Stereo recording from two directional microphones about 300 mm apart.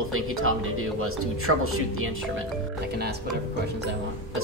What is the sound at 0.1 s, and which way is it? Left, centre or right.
Music, right.